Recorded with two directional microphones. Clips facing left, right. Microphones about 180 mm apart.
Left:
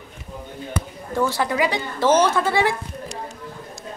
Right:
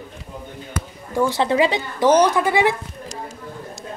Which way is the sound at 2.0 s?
15° right (ahead or behind).